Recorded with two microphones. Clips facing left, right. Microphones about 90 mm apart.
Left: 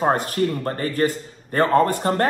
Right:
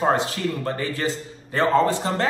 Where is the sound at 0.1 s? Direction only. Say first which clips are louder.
Left 2 dB; 45° left (ahead or behind).